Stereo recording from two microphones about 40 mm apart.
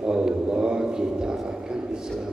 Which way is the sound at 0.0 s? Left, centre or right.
Centre.